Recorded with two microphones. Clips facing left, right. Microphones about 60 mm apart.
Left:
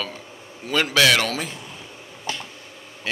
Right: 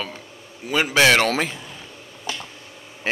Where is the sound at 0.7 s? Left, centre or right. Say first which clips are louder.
Right 1 dB; centre.